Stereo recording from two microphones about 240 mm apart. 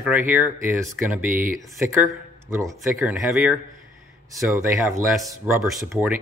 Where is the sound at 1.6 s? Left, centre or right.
Centre.